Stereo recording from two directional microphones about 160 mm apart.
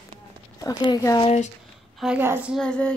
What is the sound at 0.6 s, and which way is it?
Speech, 25° left (ahead or behind).